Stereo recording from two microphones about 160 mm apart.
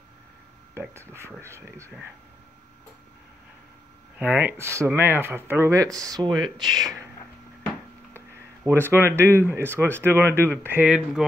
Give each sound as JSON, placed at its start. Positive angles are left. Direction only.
{"t": 0.7, "sound": "speech", "side_deg": -15}
{"t": 4.2, "sound": "speech", "side_deg": -10}
{"t": 6.6, "sound": "speech", "side_deg": 0}
{"t": 8.6, "sound": "speech", "side_deg": -15}